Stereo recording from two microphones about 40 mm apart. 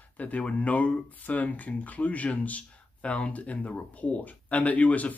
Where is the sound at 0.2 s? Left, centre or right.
Left.